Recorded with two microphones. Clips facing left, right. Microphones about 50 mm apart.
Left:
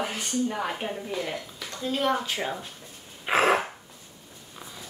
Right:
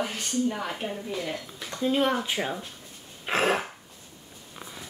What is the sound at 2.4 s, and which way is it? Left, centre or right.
Speech, centre.